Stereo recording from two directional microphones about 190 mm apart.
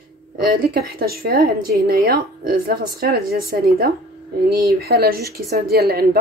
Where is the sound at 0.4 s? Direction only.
55° right (ahead or behind).